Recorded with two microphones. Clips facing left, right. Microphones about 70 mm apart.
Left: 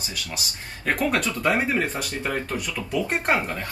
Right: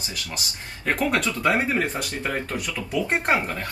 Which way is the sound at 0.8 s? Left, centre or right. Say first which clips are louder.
Even; centre.